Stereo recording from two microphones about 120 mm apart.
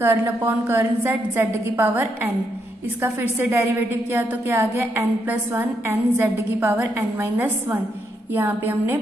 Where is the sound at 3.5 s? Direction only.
20° right (ahead or behind).